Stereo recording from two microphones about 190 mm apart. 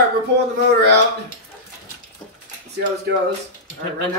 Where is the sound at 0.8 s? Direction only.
65° right (ahead or behind).